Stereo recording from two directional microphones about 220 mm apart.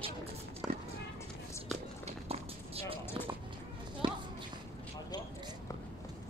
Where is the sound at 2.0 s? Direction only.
25° right (ahead or behind).